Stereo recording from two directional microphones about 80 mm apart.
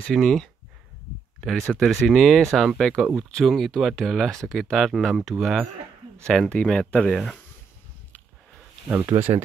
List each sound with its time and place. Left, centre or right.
0.1 s speech: centre
8.8 s speech: right